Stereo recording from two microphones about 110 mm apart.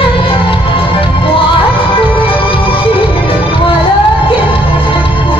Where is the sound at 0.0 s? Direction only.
55° left (ahead or behind).